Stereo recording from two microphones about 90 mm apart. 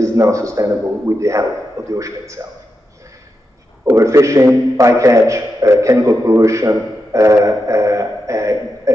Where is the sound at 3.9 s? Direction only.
35° right (ahead or behind).